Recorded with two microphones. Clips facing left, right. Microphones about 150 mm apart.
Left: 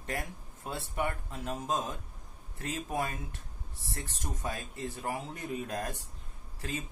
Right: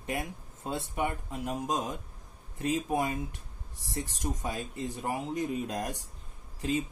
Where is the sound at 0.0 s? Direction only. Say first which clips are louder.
Right 3 dB; 15° right (ahead or behind).